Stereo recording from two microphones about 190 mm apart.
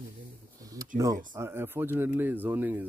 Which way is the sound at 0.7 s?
20° right (ahead or behind).